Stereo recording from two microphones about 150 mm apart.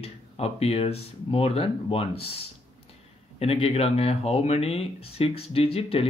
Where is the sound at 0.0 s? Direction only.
40° left (ahead or behind).